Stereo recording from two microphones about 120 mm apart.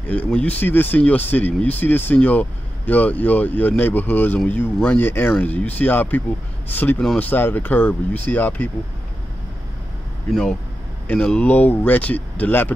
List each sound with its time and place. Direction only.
0.1 s speech: 10° left (ahead or behind)
11.1 s speech: 10° left (ahead or behind)